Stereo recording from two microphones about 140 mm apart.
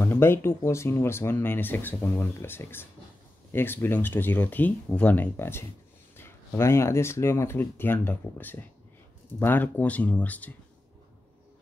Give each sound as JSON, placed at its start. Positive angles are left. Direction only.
{"t": 0.0, "sound": "speech", "side_deg": 15}